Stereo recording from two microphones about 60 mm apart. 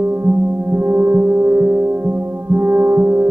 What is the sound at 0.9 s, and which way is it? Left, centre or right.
Gong, right.